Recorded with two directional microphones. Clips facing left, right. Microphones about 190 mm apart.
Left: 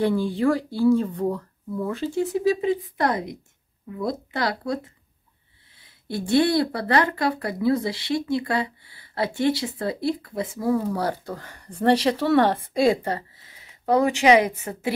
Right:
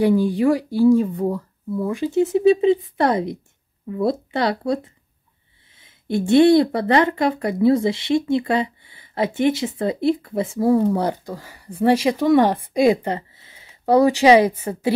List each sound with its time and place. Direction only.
0.0 s speech: 15° right (ahead or behind)
5.8 s speech: 20° right (ahead or behind)